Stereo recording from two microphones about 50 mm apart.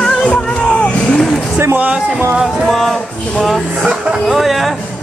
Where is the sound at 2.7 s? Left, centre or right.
Centre.